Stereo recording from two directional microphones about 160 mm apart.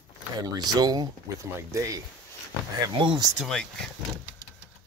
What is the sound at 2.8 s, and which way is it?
Speech, 30° right (ahead or behind).